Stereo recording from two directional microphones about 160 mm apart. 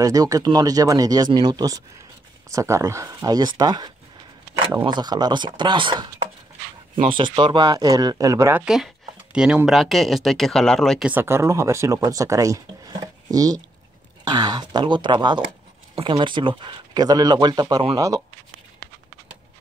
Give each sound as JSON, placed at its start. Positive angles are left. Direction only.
{"t": 0.0, "sound": "speech", "side_deg": -20}
{"t": 7.1, "sound": "speech", "side_deg": -30}
{"t": 8.6, "sound": "speech", "side_deg": -5}
{"t": 11.1, "sound": "speech", "side_deg": -15}